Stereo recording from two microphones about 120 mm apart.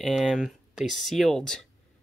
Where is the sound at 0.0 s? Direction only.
Centre (ahead or behind).